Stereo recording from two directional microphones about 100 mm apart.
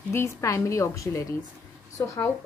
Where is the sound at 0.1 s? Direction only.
30° left (ahead or behind).